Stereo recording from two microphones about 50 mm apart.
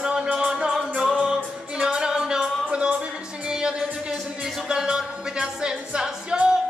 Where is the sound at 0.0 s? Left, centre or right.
Centre.